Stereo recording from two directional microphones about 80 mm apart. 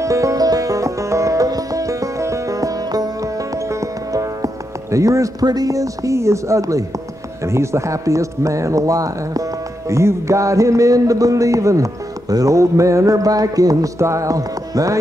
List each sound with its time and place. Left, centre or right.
0.0 s music: right
4.9 s speech: right